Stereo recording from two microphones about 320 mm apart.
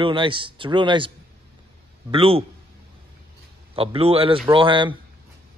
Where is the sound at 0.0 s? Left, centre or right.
Centre.